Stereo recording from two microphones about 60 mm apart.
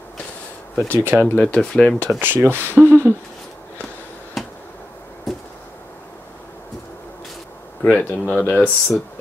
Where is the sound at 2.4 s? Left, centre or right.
Right.